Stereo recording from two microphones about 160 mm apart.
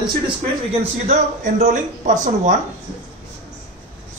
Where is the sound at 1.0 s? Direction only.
45° right (ahead or behind).